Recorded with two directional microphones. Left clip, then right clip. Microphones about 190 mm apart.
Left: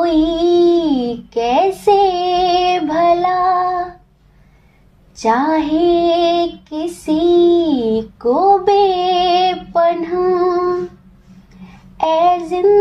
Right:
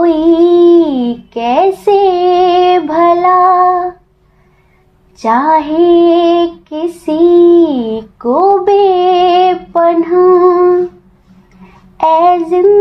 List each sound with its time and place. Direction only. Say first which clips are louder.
0.0 s a sound: right 6 dB; 10° right (ahead or behind)
5.1 s female singing: right 5 dB; 15° right (ahead or behind)
12.0 s child singing: right 5 dB; 15° right (ahead or behind)